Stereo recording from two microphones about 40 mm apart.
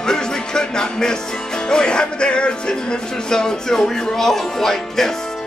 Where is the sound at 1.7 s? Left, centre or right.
Centre.